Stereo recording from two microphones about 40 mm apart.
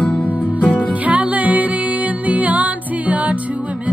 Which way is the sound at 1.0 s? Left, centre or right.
Right.